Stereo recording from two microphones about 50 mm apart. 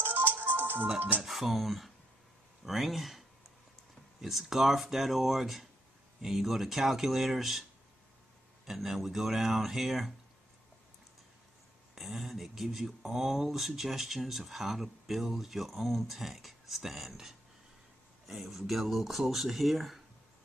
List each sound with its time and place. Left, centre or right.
0.0 s music: right
0.9 s speech: right
1.2 s speech: centre
8.6 s speech: centre
11.9 s speech: centre